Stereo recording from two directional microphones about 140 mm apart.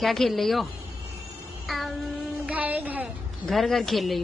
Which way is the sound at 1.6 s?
Centre (ahead or behind).